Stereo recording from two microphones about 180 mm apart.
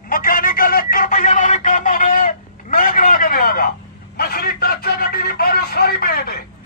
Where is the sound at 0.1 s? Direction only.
50° left (ahead or behind).